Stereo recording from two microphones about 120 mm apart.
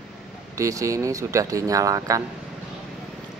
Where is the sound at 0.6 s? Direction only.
25° right (ahead or behind).